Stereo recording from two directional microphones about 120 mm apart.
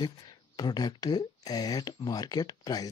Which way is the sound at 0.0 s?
35° left (ahead or behind).